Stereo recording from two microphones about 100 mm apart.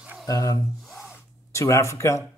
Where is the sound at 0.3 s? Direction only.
35° left (ahead or behind).